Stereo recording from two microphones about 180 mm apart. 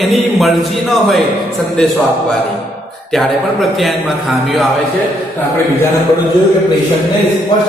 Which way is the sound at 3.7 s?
Centre (ahead or behind).